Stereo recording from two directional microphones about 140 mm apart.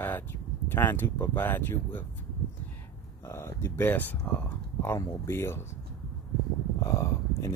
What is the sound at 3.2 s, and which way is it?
Speech, 15° left (ahead or behind).